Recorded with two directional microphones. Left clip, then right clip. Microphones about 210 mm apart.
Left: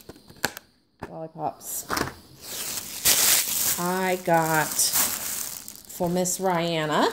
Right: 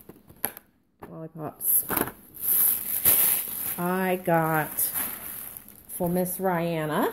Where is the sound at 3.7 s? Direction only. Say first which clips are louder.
Right 1 dB; 10° right (ahead or behind).